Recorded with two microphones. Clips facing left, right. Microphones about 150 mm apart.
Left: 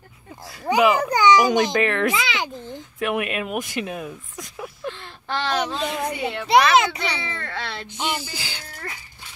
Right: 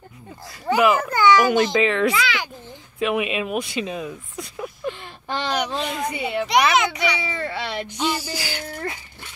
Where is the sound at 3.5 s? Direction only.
15° left (ahead or behind).